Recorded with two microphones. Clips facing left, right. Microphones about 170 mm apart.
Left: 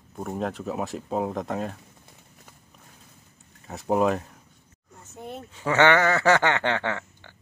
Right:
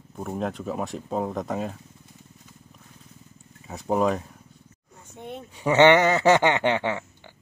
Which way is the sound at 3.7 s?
Centre (ahead or behind).